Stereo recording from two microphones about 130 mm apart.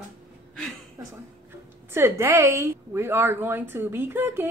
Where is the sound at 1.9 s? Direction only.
20° right (ahead or behind).